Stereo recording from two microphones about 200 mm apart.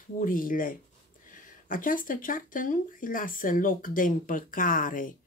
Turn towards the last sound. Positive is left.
turn(degrees=40)  # may be behind; listen again after turning